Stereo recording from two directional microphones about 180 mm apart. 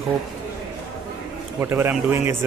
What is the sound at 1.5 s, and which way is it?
Speech, 10° right (ahead or behind).